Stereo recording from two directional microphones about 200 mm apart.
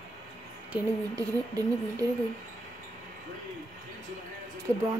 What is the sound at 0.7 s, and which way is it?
Speech, 15° right (ahead or behind).